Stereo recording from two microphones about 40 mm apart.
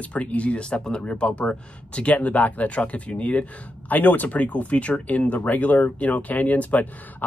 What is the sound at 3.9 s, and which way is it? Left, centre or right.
Speech, left.